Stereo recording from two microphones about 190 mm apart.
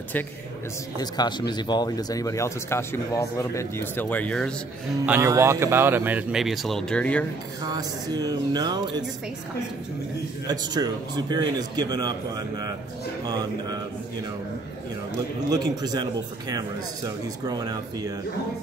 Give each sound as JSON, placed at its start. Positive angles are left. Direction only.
{"t": 0.9, "sound": "speech", "side_deg": 20}
{"t": 5.0, "sound": "speech", "side_deg": -10}
{"t": 7.6, "sound": "a man's voice", "side_deg": -20}
{"t": 10.5, "sound": "a man's voice", "side_deg": -20}
{"t": 15.5, "sound": "a man's voice", "side_deg": -20}